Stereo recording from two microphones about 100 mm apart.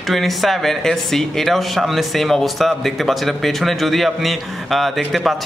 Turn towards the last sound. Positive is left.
turn(degrees=0)  # may be behind; listen again after turning